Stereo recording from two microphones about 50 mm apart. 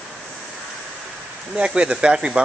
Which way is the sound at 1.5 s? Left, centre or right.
Right.